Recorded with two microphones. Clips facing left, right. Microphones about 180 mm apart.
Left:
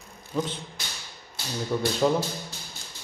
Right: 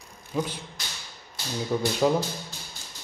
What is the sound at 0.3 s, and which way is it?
Speech, 10° right (ahead or behind).